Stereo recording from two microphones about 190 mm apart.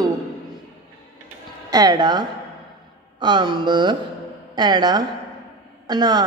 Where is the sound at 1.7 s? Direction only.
20° right (ahead or behind).